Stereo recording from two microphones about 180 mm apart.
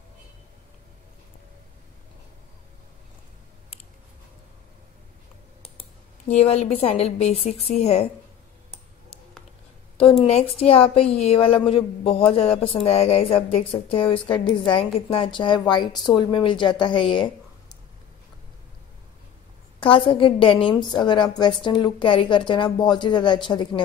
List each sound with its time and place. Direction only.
6.2 s a woman's voice: 35° left (ahead or behind)
10.2 s a woman's voice: 35° left (ahead or behind)
19.8 s a woman's voice: 30° left (ahead or behind)